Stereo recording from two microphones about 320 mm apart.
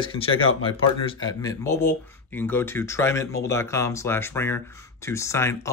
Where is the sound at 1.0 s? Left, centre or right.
Centre.